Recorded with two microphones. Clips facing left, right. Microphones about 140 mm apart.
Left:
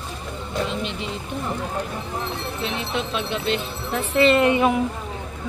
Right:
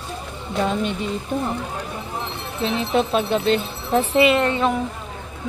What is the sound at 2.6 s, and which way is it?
Speech, 40° right (ahead or behind).